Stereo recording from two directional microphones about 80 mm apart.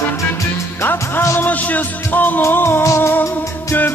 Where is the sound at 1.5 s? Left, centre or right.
Centre.